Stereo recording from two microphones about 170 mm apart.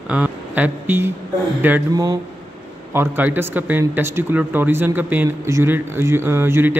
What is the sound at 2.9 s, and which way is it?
Speech, 10° right (ahead or behind).